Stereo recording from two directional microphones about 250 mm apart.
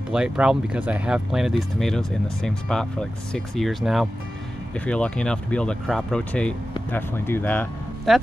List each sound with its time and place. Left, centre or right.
0.1 s speech: centre